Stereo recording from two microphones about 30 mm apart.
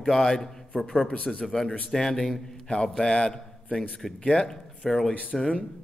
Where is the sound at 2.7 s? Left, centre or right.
Left.